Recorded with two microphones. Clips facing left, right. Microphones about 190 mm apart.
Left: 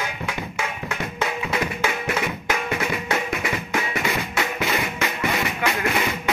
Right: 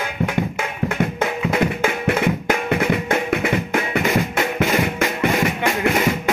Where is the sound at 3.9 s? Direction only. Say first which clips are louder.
Right 6 dB; 50° right (ahead or behind).